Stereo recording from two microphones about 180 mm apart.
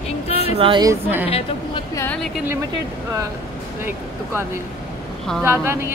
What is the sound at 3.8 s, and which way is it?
Speech, 15° right (ahead or behind).